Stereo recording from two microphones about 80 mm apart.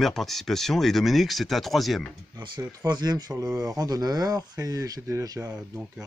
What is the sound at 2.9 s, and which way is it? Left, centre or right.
Speech, right.